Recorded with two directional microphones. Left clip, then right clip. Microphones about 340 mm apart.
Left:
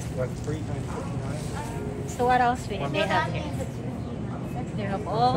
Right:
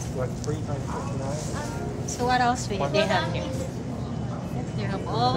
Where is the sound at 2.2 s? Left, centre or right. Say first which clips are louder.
Left 1 dB; centre.